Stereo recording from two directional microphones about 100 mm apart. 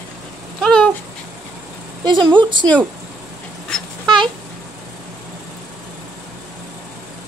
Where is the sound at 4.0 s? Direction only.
50° right (ahead or behind).